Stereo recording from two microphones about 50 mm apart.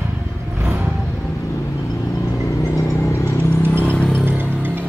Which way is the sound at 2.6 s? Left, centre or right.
Left.